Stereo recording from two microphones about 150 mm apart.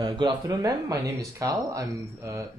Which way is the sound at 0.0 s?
25° right (ahead or behind).